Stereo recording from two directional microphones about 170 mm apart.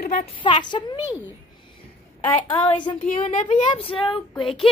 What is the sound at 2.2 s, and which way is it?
Speech, 25° left (ahead or behind).